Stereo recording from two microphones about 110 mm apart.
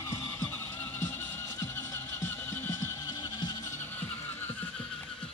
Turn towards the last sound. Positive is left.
turn(degrees=15)  # may be behind; listen again after turning